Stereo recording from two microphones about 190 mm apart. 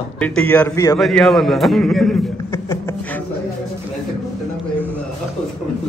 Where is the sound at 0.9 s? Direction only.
Centre (ahead or behind).